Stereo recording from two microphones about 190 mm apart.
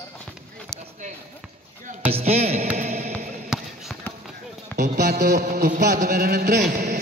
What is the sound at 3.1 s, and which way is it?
Basketball bounce, 5° left (ahead or behind).